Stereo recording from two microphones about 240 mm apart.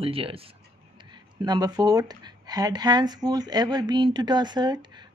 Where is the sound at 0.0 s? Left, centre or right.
Right.